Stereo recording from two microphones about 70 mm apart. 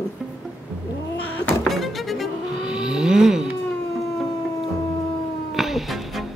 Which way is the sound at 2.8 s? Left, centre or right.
Centre.